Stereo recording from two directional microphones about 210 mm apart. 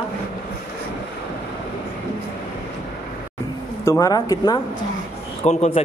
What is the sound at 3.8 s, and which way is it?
Speech, 15° left (ahead or behind).